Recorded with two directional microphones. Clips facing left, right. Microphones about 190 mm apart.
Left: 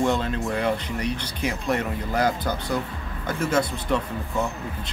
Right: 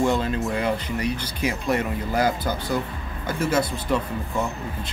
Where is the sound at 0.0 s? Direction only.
5° right (ahead or behind).